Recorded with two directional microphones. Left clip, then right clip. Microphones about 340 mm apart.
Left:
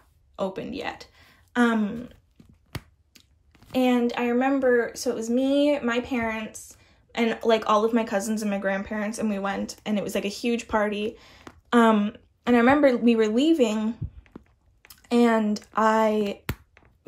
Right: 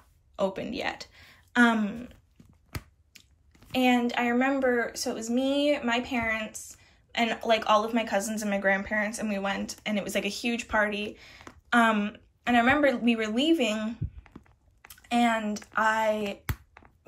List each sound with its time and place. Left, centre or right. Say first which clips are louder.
0.4 s speech: even; centre